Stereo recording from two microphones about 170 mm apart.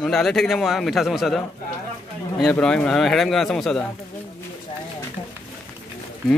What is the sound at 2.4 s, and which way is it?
Speech, 5° left (ahead or behind).